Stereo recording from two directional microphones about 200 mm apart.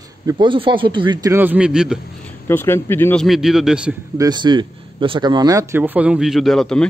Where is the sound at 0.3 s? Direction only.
25° right (ahead or behind); by 2.0 s 5° right (ahead or behind).